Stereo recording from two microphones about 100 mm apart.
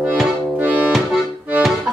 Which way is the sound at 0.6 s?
15° right (ahead or behind).